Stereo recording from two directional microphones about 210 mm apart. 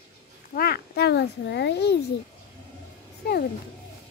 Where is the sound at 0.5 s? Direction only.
45° left (ahead or behind).